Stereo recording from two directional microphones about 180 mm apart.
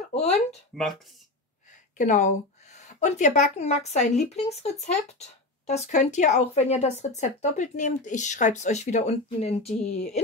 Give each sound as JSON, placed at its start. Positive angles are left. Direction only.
{"t": 0.1, "sound": "speech", "side_deg": 35}
{"t": 2.0, "sound": "speech", "side_deg": 45}